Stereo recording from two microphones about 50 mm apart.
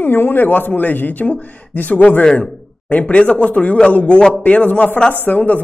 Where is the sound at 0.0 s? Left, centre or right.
Left.